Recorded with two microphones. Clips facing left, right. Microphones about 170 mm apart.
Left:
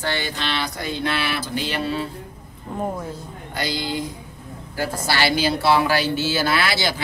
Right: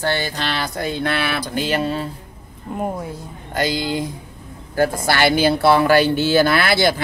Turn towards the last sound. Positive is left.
turn(degrees=-50)  # may be behind; listen again after turning